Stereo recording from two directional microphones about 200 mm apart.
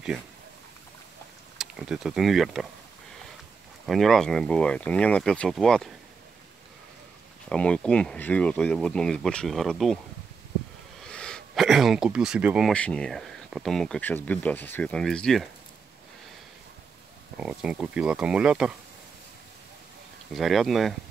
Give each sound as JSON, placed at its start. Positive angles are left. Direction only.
{"t": 1.6, "sound": "speech", "side_deg": -5}
{"t": 3.8, "sound": "speech", "side_deg": 0}
{"t": 7.4, "sound": "speech", "side_deg": 5}
{"t": 11.1, "sound": "speech", "side_deg": 5}
{"t": 17.4, "sound": "speech", "side_deg": -5}
{"t": 20.3, "sound": "speech", "side_deg": 0}